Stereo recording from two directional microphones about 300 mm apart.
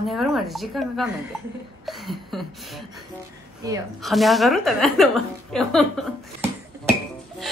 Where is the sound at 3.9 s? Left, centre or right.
Centre.